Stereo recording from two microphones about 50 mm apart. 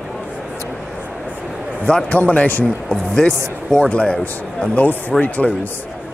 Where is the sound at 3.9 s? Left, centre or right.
Left.